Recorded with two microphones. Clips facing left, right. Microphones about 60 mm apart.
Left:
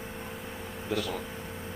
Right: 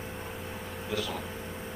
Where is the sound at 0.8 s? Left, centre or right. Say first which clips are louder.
Left 2 dB; left.